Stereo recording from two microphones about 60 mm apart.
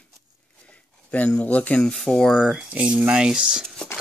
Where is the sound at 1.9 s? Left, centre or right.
Centre.